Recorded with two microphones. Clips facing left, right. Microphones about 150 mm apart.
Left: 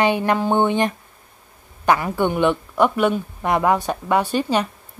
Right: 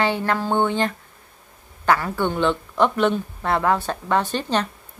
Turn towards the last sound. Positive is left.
turn(degrees=10)  # may be behind; listen again after turning